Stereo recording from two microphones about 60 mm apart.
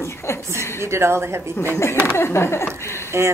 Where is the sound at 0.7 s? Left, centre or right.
Right.